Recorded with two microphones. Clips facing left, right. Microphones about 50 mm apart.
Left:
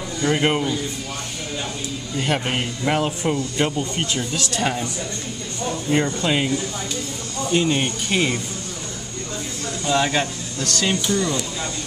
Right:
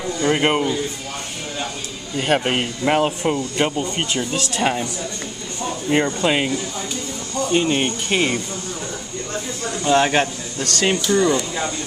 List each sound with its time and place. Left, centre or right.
0.2 s speech: centre
2.1 s a man's voice: centre
5.9 s a man's voice: right
7.5 s speech: centre
9.8 s a man's voice: right